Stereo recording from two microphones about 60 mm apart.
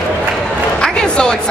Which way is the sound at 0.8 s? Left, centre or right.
Centre.